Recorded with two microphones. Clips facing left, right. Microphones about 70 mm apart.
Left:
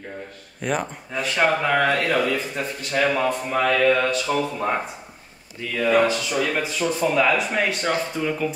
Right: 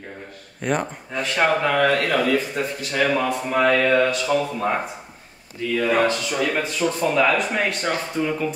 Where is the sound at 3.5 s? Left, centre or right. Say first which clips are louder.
Right 5 dB; right.